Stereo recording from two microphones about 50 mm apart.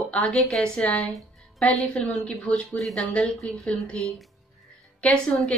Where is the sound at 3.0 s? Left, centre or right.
Left.